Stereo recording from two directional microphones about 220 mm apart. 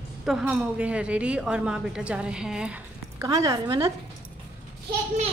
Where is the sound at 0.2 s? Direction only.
Centre (ahead or behind).